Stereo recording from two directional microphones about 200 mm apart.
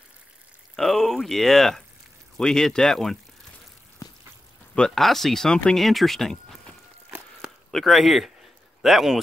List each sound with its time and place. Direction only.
0.7 s speech: centre (ahead or behind)
4.0 s a sound: 15° left (ahead or behind)
4.7 s speech: centre (ahead or behind)